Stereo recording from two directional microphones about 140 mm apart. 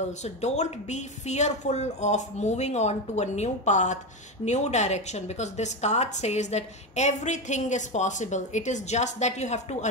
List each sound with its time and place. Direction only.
0.2 s a woman's voice: 55° left (ahead or behind)